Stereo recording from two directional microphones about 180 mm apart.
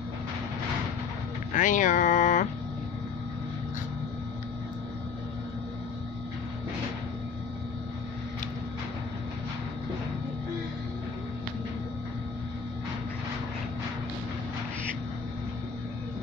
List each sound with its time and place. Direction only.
1.5 s speech: 45° left (ahead or behind)